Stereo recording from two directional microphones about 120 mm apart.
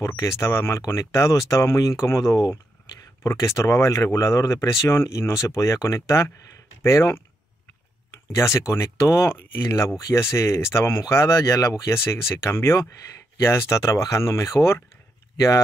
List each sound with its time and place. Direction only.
0.0 s speech: 25° left (ahead or behind)
8.4 s speech: 25° left (ahead or behind)